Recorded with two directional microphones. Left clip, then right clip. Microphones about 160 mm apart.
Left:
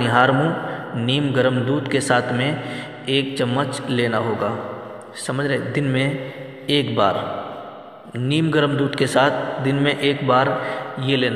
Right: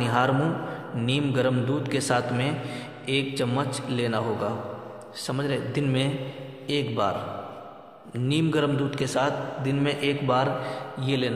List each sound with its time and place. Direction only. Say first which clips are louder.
0.0 s a man's voice: left 7 dB; 25° left (ahead or behind)
6.7 s a man's voice: left 8 dB; 30° left (ahead or behind)
8.2 s a man's voice: left 6 dB; 20° left (ahead or behind)